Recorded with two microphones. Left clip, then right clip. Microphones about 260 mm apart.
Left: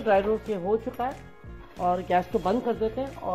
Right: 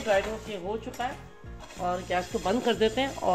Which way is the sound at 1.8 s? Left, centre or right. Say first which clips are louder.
Left 5 dB; centre.